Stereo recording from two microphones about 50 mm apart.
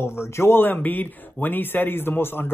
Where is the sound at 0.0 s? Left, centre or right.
Left.